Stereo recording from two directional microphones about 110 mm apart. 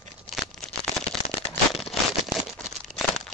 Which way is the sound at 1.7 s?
Centre (ahead or behind).